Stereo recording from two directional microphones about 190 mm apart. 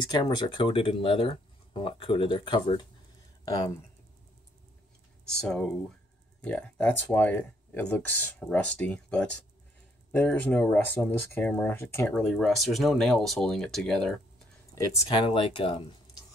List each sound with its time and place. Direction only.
0.1 s speech: 25° left (ahead or behind)
5.3 s speech: 5° left (ahead or behind)
14.8 s speech: 25° left (ahead or behind)